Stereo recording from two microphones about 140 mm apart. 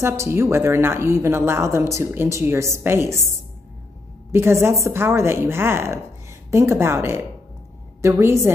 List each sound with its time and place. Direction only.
0.0 s a woman's voice: 20° right (ahead or behind)
4.3 s a woman's voice: 20° right (ahead or behind)